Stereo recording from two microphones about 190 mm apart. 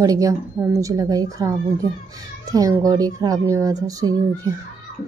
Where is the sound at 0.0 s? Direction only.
20° right (ahead or behind).